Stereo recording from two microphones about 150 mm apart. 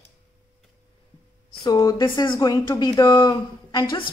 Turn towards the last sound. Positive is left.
turn(degrees=35)  # may be behind; listen again after turning